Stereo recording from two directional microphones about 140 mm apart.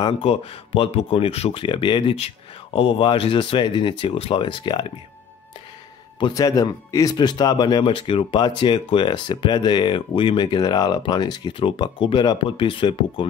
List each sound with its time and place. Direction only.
0.2 s speech: 45° left (ahead or behind)
6.1 s speech: 35° left (ahead or behind)
6.4 s speech: 25° left (ahead or behind)